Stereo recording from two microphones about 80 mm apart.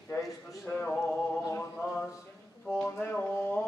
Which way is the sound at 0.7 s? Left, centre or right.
Centre.